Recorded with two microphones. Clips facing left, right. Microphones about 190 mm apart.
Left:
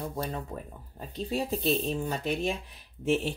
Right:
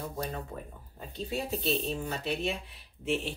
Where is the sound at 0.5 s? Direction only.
40° left (ahead or behind).